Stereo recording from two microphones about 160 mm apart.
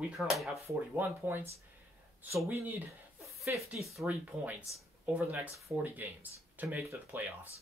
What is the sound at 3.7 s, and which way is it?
Speech, centre (ahead or behind).